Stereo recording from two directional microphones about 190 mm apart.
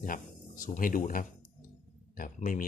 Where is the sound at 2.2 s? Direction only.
45° left (ahead or behind).